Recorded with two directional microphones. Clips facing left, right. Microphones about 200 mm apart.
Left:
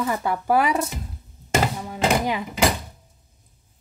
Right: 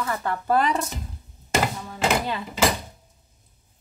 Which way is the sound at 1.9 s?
15° left (ahead or behind).